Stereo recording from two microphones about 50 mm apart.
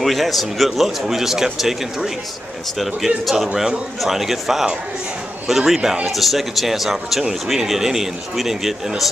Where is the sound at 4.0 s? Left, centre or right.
Centre.